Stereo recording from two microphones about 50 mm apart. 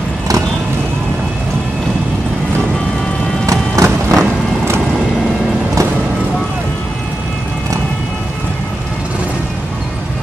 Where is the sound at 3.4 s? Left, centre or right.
Right.